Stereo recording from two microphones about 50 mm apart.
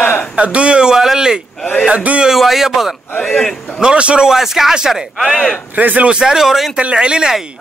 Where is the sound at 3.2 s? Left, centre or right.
Centre.